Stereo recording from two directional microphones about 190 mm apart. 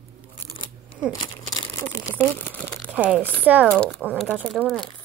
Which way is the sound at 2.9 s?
10° right (ahead or behind).